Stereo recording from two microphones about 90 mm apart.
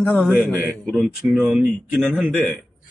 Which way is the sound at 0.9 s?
5° right (ahead or behind).